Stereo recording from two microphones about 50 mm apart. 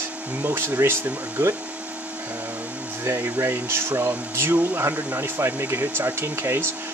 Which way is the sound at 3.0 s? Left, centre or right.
Right.